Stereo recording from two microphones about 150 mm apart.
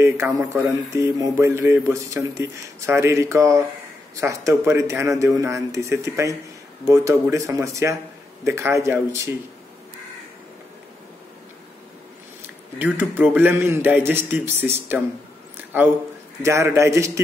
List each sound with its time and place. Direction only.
0.0 s speech: 15° right (ahead or behind)
12.4 s a man's voice: 10° right (ahead or behind)
16.4 s speech: 20° right (ahead or behind)